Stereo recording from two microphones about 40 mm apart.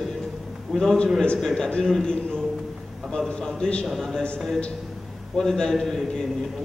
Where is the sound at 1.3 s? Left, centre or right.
Centre.